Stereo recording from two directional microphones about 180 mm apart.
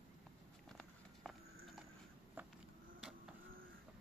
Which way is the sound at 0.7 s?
Centre (ahead or behind).